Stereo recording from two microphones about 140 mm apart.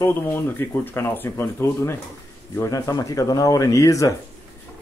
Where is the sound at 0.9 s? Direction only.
15° left (ahead or behind).